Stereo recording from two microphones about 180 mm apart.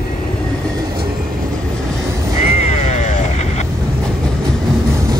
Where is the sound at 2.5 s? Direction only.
40° left (ahead or behind).